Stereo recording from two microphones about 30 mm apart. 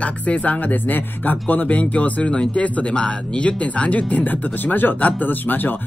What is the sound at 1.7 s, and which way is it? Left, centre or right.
Speech, left.